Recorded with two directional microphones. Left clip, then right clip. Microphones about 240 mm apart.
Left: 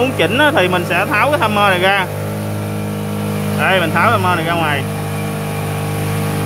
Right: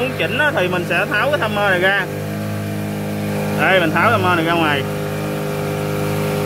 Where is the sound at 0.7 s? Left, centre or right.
Centre.